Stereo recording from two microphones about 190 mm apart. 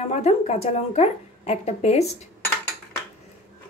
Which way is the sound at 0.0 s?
35° left (ahead or behind).